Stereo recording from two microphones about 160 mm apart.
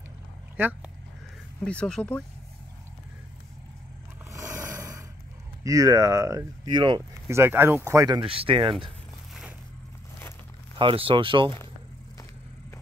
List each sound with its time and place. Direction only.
0.6 s speech: 10° right (ahead or behind)
1.6 s speech: 5° left (ahead or behind)
4.3 s a sound: 20° right (ahead or behind)
5.6 s speech: 20° right (ahead or behind)
7.2 s speech: 15° right (ahead or behind)
8.2 s speech: 35° right (ahead or behind)
10.8 s speech: 35° right (ahead or behind)